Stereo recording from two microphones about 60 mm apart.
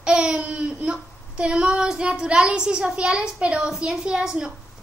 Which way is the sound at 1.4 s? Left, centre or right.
Centre.